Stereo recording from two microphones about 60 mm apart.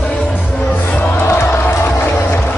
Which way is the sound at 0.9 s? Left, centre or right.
Left.